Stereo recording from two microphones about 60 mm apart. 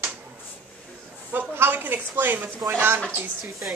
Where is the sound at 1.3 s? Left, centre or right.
Right.